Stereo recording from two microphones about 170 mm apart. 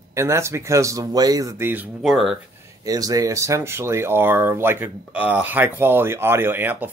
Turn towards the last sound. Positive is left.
turn(degrees=-10)  # may be behind; listen again after turning